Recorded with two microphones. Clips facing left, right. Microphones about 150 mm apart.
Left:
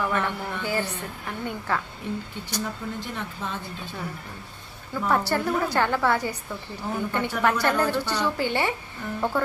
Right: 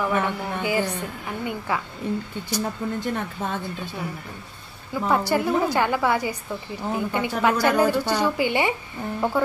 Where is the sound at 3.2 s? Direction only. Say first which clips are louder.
Right 4 dB; 50° right (ahead or behind).